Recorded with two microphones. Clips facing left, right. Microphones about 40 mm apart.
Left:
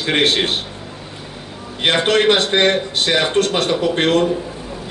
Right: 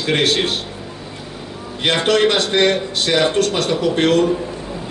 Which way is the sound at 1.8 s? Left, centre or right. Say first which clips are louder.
Left 1 dB; left.